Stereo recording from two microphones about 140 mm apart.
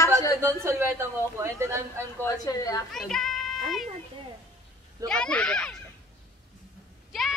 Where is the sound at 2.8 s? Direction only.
Centre (ahead or behind).